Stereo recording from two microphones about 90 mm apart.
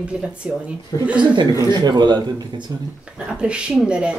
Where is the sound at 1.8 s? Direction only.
55° right (ahead or behind).